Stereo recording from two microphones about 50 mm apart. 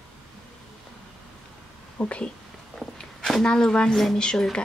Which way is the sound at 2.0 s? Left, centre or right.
Left.